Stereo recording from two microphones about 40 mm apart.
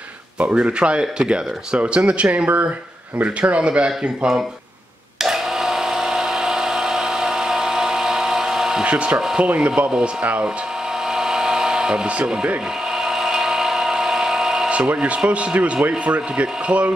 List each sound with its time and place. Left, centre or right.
0.4 s speech: right
1.8 s speech: right
2.4 s speech: right
3.3 s speech: right
5.2 s blender: centre
8.8 s speech: right
11.1 s a sound: centre
13.0 s a sound: centre
14.7 s speech: right